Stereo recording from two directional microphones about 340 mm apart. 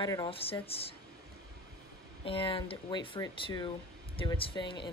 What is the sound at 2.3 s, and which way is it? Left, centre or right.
Speech, centre.